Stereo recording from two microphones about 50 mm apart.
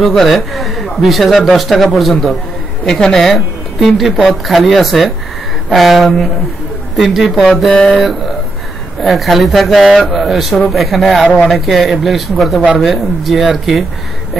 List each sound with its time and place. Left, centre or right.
0.0 s speech: centre
2.8 s a woman's voice: centre
7.7 s mantra: centre
9.0 s speech: centre